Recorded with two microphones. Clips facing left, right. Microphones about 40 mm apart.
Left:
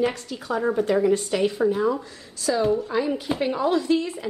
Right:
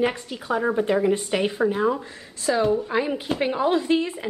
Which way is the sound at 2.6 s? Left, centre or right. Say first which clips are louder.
Even; centre.